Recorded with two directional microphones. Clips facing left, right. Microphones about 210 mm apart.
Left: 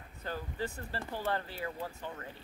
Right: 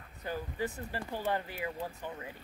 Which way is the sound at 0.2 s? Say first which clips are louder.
Right 2 dB; 15° right (ahead or behind).